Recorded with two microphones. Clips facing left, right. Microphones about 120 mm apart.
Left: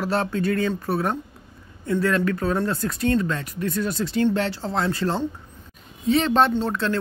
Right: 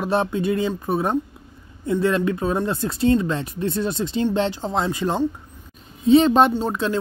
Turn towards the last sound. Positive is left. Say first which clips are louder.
# right 1 dB
turn(degrees=-15)  # may be behind; listen again after turning